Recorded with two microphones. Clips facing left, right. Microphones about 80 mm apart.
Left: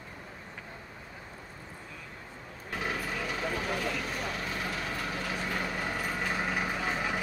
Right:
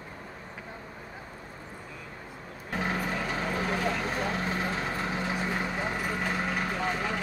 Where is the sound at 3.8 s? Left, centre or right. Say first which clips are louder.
Right 4 dB; right.